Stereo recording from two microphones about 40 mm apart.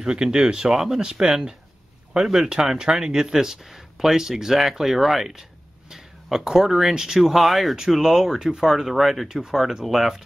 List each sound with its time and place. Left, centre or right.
0.0 s speech: centre